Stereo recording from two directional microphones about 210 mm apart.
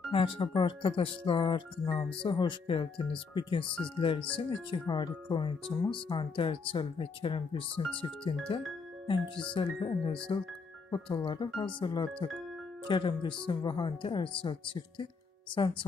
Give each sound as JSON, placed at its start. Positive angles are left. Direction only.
{"t": 0.1, "sound": "speech", "side_deg": 25}